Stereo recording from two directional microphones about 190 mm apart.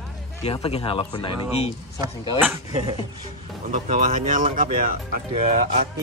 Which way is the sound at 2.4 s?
20° right (ahead or behind).